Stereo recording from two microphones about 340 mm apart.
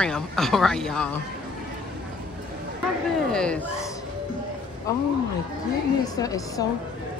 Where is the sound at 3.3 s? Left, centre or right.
Centre.